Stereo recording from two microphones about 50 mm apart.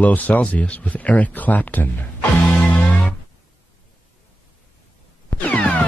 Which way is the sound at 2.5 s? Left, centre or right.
Left.